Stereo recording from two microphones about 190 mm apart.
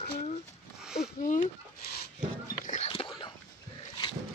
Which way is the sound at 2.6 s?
35° left (ahead or behind).